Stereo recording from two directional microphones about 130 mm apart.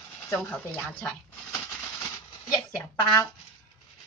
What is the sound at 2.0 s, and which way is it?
Speech, 25° left (ahead or behind).